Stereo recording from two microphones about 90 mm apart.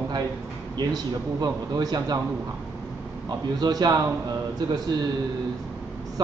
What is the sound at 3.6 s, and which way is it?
Speech, 45° right (ahead or behind).